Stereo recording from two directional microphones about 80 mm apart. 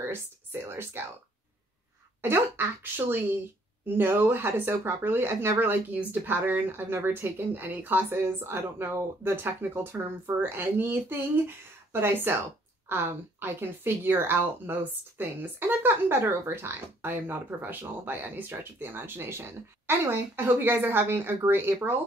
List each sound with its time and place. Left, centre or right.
0.0 s speech: right
2.2 s speech: right